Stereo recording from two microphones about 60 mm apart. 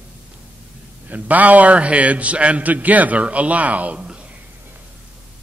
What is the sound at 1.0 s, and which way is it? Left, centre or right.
A man's voice, right.